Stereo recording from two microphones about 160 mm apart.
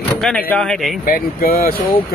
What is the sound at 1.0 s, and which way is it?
Speech, 60° left (ahead or behind).